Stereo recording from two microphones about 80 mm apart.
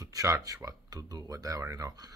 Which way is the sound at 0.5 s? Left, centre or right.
Right.